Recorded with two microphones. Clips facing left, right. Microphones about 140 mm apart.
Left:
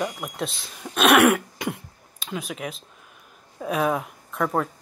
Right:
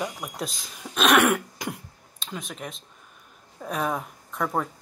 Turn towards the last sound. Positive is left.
turn(degrees=0)  # may be behind; listen again after turning